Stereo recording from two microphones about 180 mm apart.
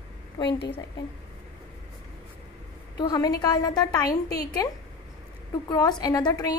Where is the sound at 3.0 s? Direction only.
20° left (ahead or behind).